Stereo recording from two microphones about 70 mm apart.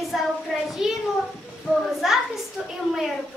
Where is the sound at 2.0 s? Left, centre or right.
Centre.